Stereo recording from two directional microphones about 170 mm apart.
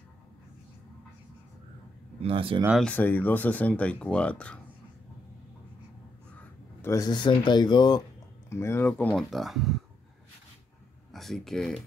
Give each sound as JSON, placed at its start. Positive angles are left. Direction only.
{"t": 2.2, "sound": "speech", "side_deg": -30}
{"t": 2.8, "sound": "speech", "side_deg": 10}
{"t": 6.8, "sound": "speech", "side_deg": 20}
{"t": 11.1, "sound": "speech", "side_deg": 0}